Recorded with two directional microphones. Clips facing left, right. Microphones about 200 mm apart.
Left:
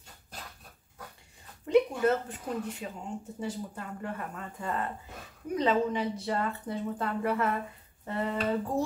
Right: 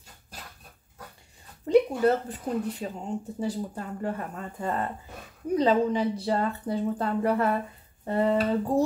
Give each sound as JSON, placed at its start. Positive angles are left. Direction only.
{"t": 1.7, "sound": "speech", "side_deg": -35}